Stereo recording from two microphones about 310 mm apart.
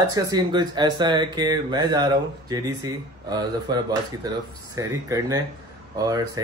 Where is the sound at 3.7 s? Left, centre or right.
Centre.